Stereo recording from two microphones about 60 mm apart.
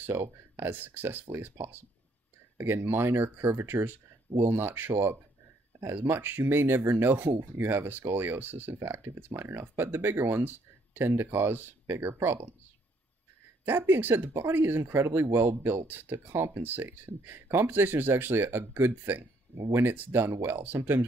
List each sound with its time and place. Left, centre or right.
0.0 s speech: right
2.6 s speech: right
13.7 s speech: right